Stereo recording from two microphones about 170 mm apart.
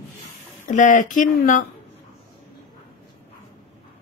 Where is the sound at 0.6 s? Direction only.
45° left (ahead or behind).